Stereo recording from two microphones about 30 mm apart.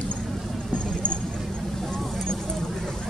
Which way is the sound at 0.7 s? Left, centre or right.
Left.